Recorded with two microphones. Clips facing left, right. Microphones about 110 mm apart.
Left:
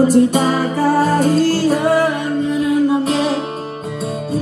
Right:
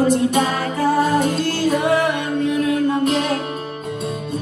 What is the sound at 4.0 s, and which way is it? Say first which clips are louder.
Music: left 5 dB; 40° left (ahead or behind).